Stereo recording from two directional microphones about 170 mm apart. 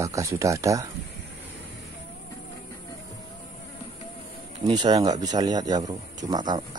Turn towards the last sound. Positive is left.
turn(degrees=-25)  # may be behind; listen again after turning